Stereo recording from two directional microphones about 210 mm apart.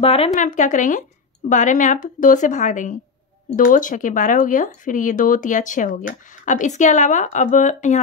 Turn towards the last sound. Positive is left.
turn(degrees=35)  # may be behind; listen again after turning